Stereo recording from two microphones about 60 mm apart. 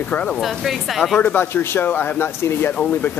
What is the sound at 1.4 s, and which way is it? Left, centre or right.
Speech, left.